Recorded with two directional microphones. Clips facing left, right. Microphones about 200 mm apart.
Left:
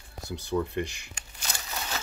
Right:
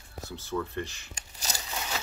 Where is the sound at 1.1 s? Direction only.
40° right (ahead or behind).